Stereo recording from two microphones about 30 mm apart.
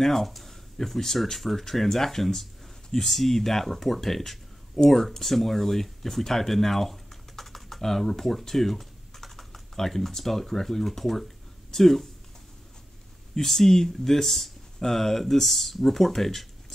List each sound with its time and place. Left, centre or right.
0.0 s speech: centre
13.3 s speech: centre